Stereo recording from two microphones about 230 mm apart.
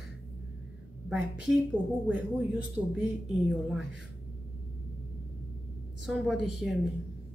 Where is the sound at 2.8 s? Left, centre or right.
Centre.